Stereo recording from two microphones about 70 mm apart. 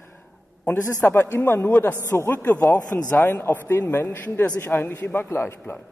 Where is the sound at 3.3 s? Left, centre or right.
Left.